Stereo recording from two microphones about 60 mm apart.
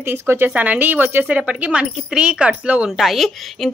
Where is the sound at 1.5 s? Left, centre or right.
Right.